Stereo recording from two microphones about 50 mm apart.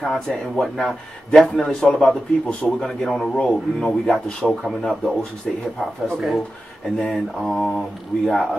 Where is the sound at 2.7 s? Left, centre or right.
Centre.